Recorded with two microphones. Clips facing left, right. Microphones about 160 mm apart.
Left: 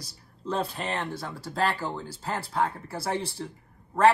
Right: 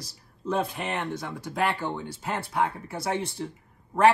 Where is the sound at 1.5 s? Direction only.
25° right (ahead or behind).